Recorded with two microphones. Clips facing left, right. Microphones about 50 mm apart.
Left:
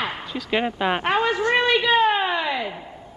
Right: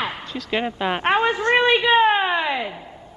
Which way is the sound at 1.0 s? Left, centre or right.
Right.